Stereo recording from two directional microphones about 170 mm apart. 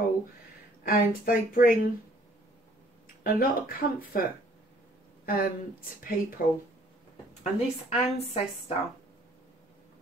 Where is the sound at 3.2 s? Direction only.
60° left (ahead or behind).